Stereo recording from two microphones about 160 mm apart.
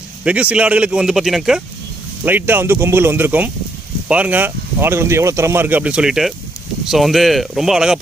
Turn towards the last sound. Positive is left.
turn(degrees=0)  # may be behind; listen again after turning